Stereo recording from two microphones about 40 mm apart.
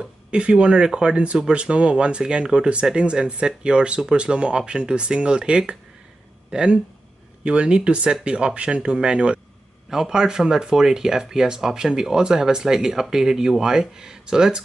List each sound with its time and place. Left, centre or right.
0.0 s speech: right